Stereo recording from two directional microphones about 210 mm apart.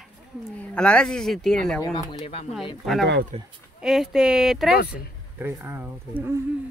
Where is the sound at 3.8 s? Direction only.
Centre (ahead or behind).